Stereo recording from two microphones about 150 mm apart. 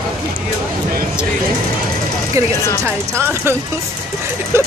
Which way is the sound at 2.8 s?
15° right (ahead or behind).